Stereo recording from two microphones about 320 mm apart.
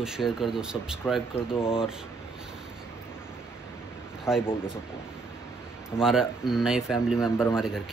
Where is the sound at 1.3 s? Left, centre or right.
Centre.